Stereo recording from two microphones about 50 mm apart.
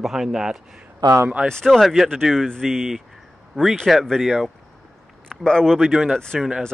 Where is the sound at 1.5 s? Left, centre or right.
Centre.